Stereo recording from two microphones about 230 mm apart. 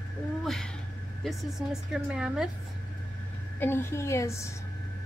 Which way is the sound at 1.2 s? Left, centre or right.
Centre.